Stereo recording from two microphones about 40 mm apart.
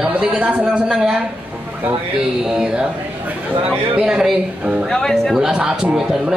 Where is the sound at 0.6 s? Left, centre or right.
Right.